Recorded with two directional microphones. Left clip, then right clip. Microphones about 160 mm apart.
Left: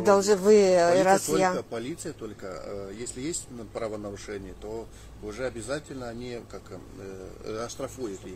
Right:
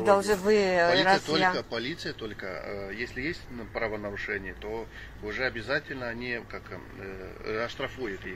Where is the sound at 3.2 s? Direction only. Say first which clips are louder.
Right 1 dB; 65° left (ahead or behind).